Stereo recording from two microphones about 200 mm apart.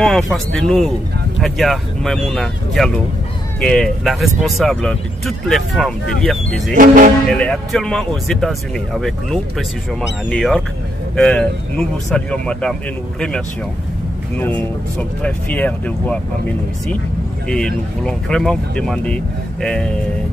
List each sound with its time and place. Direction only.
0.0 s speech: centre (ahead or behind)
6.7 s speech: 45° right (ahead or behind)
7.2 s speech: 5° left (ahead or behind)
14.3 s speech: 5° left (ahead or behind)
17.5 s speech: 5° left (ahead or behind)